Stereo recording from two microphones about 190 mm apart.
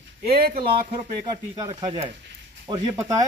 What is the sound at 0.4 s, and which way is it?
Speech, 50° right (ahead or behind).